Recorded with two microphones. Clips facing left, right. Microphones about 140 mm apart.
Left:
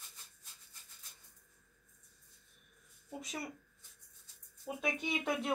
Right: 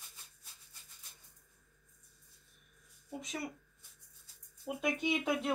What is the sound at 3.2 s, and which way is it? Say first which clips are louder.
Speech: right 2 dB; centre (ahead or behind).